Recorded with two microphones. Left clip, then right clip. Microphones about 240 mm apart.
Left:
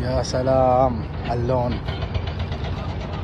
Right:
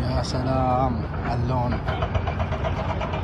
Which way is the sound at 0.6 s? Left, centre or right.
Left.